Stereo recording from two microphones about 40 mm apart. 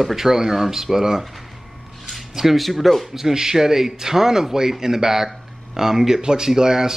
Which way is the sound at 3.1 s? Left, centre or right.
Centre.